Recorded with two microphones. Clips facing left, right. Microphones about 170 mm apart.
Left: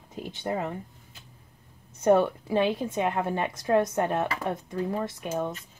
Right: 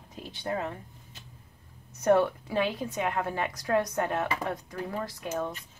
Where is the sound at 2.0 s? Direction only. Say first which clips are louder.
Left 2 dB; 25° left (ahead or behind).